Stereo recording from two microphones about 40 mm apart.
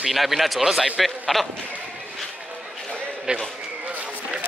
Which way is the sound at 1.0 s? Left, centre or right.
Centre.